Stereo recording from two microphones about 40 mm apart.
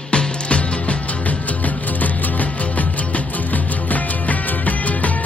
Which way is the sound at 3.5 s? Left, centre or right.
Left.